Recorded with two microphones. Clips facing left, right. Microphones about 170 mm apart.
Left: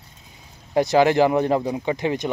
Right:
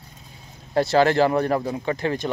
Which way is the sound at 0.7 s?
15° left (ahead or behind).